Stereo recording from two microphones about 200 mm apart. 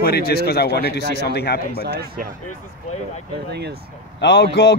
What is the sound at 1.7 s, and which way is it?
Speech, 50° right (ahead or behind).